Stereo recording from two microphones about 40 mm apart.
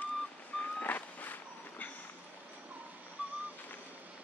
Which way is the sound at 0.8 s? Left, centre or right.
Left.